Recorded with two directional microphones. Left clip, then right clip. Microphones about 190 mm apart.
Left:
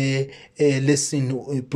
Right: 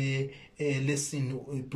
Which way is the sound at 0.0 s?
40° left (ahead or behind).